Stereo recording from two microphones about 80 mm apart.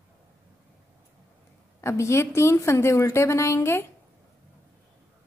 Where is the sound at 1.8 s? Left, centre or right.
Left.